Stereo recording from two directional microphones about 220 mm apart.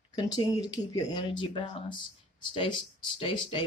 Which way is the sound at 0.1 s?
20° left (ahead or behind).